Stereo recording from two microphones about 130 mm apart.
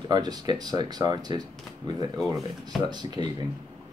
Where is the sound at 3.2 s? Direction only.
35° right (ahead or behind).